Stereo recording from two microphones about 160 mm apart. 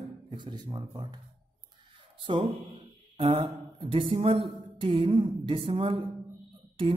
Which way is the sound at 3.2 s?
30° right (ahead or behind).